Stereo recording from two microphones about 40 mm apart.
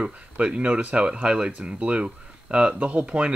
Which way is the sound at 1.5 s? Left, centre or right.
Right.